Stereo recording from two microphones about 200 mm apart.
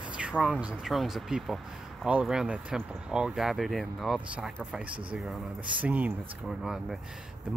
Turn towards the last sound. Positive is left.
turn(degrees=0)  # may be behind; listen again after turning